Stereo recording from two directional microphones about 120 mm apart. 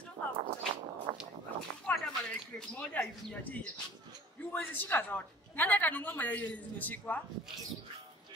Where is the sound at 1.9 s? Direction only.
10° left (ahead or behind).